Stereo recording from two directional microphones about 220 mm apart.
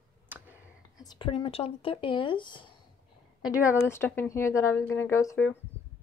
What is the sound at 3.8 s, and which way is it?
Speech, 10° left (ahead or behind).